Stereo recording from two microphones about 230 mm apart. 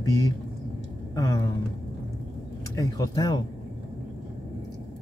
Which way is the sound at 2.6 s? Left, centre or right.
Centre.